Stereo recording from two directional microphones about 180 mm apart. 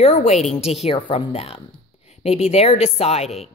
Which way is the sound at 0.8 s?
30° left (ahead or behind).